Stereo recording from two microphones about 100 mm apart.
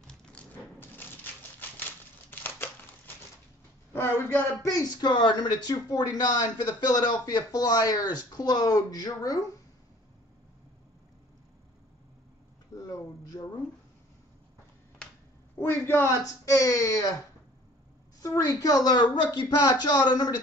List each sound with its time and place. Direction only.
0.0 s a sound: 10° left (ahead or behind)
0.7 s crumpling: 20° left (ahead or behind)
3.9 s a man's voice: 20° left (ahead or behind)
4.6 s speech: 45° left (ahead or behind)
12.7 s a sound: 35° left (ahead or behind)
15.6 s a man's voice: 25° left (ahead or behind)
16.5 s speech: 35° left (ahead or behind)
18.2 s speech: 35° left (ahead or behind)